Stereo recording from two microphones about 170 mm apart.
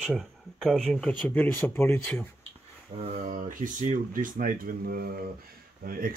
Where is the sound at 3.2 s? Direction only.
50° right (ahead or behind).